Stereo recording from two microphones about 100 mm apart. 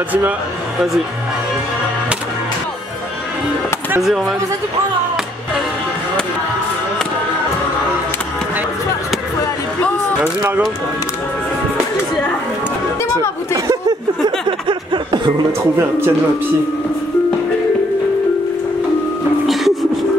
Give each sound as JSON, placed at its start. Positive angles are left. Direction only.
{"t": 4.0, "sound": "speech", "side_deg": -5}
{"t": 9.8, "sound": "music", "side_deg": 15}
{"t": 13.8, "sound": "snicker", "side_deg": -50}
{"t": 19.4, "sound": "music", "side_deg": 0}